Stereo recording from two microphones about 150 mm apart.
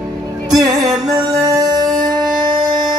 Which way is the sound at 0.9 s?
25° right (ahead or behind).